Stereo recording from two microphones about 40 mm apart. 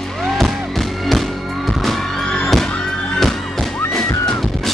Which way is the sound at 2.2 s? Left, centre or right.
Left.